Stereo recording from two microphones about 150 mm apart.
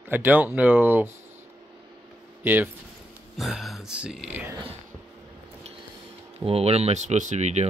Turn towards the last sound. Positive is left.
turn(degrees=-50)  # may be behind; listen again after turning